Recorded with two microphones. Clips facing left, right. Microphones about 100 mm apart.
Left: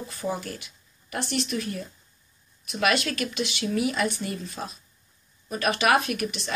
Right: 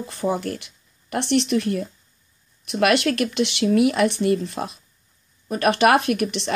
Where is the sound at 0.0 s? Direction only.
55° right (ahead or behind).